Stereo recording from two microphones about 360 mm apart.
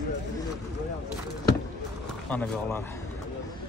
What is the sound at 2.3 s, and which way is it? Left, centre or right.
Speech, centre.